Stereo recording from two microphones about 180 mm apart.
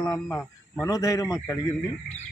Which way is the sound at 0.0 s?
20° left (ahead or behind).